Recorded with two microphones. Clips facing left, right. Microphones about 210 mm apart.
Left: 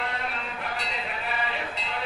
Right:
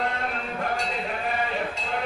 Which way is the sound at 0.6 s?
45° right (ahead or behind).